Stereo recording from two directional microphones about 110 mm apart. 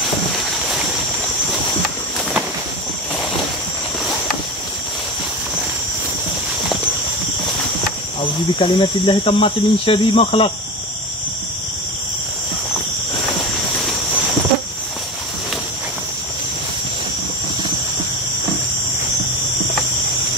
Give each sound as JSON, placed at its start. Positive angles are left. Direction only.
{"t": 8.5, "sound": "speech", "side_deg": 50}